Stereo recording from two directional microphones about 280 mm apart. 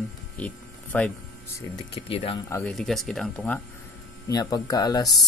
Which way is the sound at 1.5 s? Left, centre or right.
Centre.